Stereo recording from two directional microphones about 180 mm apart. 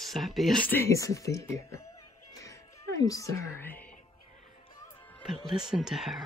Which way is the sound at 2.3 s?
20° left (ahead or behind).